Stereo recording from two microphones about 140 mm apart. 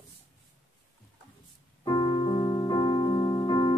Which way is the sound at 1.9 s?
35° left (ahead or behind).